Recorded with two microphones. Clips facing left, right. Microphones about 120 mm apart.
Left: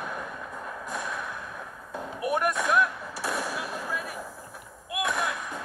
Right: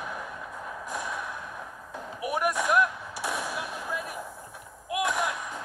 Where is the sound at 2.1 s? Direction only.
5° right (ahead or behind).